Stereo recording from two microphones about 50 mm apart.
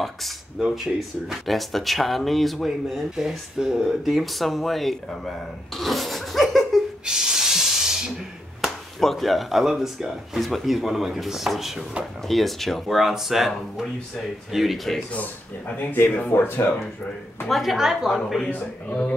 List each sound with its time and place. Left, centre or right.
0.0 s speech: centre
5.8 s laughter: centre
7.1 s hiss: centre
8.5 s speech: centre
12.8 s speech: centre
15.1 s speech: left
16.3 s speech: left
17.5 s speech: centre
18.5 s speech: left